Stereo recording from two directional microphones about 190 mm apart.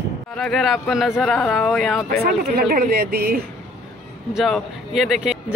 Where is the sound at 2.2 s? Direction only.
50° right (ahead or behind).